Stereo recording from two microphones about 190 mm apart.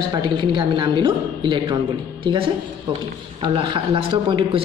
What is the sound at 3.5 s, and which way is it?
A man's voice, 25° right (ahead or behind).